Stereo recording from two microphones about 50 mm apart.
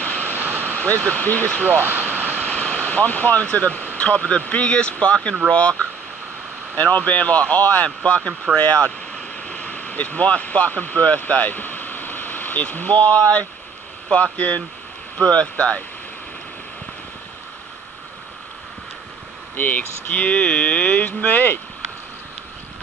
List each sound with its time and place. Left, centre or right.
0.0 s a sound: left
0.4 s a sound: right
1.0 s speech: left
1.7 s vehicle: right
2.4 s vehicle: left
3.4 s speech: left
8.0 s speech: centre
8.5 s speech: left
19.5 s speech: left